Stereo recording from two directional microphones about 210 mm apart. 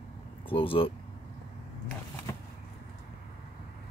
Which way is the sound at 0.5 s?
25° left (ahead or behind).